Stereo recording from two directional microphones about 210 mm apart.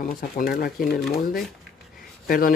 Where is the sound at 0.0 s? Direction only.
40° left (ahead or behind).